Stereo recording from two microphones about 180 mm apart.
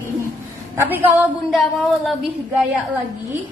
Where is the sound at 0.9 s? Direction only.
10° right (ahead or behind).